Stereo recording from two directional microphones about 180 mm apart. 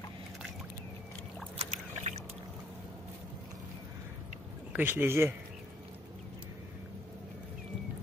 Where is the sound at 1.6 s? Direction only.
35° right (ahead or behind).